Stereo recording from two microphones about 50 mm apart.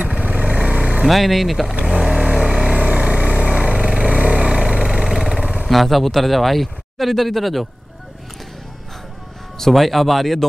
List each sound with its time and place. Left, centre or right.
0.0 s vehicle: right
1.0 s speech: centre
1.9 s vehicle: centre
2.7 s vehicle: right
5.4 s vehicle: centre
5.7 s speech: centre
9.6 s speech: centre